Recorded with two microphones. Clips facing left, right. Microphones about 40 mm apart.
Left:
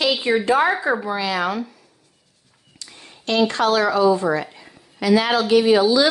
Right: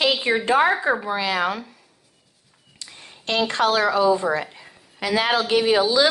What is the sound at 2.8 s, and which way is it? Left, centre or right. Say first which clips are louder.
Speech: even; right.